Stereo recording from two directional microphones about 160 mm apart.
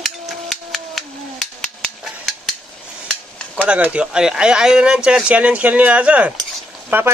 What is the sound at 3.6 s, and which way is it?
Speech, 10° right (ahead or behind).